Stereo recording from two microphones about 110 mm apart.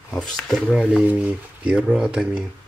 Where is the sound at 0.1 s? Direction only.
5° left (ahead or behind).